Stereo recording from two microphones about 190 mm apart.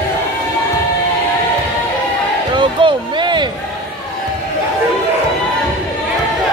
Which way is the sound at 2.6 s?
25° right (ahead or behind).